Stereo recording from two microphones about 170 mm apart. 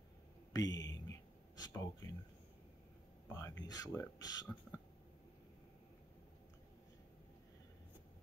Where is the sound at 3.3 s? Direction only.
15° left (ahead or behind).